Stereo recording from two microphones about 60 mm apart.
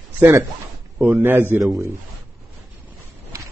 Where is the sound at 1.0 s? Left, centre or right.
Right.